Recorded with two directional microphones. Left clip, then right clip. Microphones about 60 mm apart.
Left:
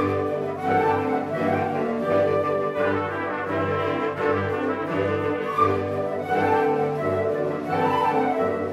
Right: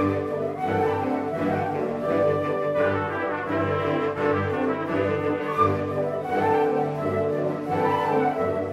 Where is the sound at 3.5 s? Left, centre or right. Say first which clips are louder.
Left 1 dB; centre.